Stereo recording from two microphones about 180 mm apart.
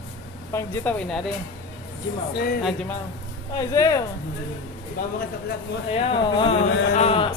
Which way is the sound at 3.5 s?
20° left (ahead or behind).